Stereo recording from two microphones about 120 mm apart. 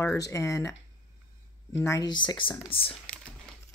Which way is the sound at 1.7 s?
25° left (ahead or behind).